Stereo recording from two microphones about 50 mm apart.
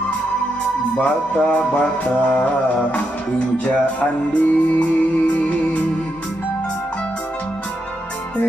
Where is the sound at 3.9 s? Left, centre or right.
Left.